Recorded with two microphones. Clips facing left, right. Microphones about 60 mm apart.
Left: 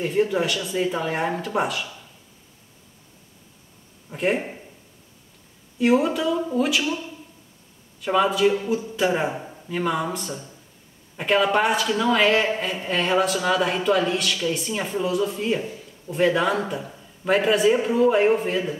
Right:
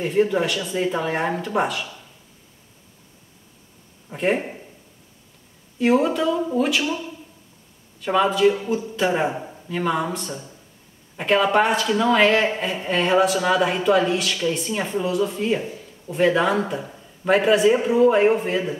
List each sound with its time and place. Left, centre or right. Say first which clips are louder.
0.0 s speech: right 2 dB; centre
4.2 s speech: right 1 dB; centre
5.8 s speech: right 1 dB; centre
6.8 s a man's voice: right 1 dB; centre
8.0 s a man's voice: right 2 dB; centre